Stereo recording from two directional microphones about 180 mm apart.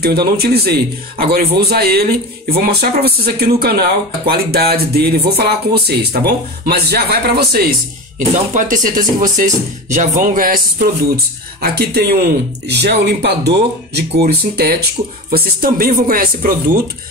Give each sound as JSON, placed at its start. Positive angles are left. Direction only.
{"t": 0.0, "sound": "a man's voice", "side_deg": -60}
{"t": 8.5, "sound": "a man's voice", "side_deg": -45}